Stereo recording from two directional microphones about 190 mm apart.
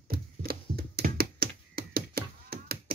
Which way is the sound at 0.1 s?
55° right (ahead or behind).